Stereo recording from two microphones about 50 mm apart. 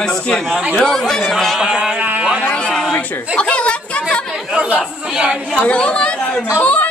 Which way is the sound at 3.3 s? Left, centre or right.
Left.